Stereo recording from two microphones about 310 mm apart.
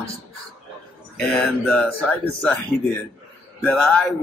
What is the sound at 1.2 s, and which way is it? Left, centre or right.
Speech, centre.